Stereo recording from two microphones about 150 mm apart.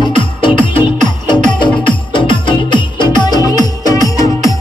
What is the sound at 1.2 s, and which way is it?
Music, 30° left (ahead or behind).